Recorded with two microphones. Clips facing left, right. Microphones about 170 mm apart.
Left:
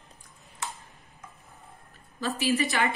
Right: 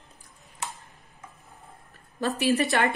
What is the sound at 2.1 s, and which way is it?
Speech, 60° right (ahead or behind).